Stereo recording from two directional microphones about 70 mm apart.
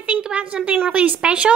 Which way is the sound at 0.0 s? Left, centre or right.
Centre.